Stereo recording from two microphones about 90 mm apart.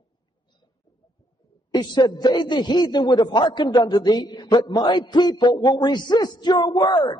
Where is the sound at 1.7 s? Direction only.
55° left (ahead or behind).